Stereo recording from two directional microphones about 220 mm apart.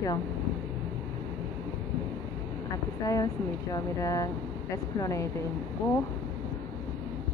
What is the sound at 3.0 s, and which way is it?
Speech, 15° left (ahead or behind).